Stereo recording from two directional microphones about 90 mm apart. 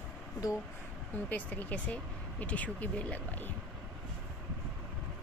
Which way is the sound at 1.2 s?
20° left (ahead or behind).